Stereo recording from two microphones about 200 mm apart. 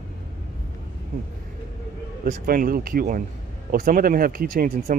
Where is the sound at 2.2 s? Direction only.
45° right (ahead or behind).